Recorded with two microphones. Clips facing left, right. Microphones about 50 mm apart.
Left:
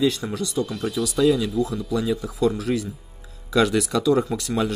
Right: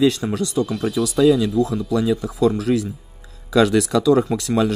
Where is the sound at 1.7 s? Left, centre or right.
Right.